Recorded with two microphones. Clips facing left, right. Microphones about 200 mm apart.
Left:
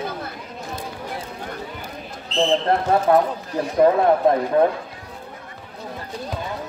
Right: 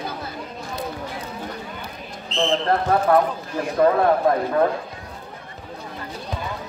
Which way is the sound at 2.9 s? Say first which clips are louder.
Left 1 dB; 20° left (ahead or behind).